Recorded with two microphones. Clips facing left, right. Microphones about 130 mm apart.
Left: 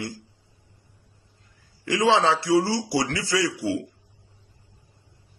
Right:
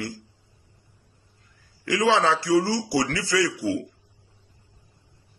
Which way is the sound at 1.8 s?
25° left (ahead or behind).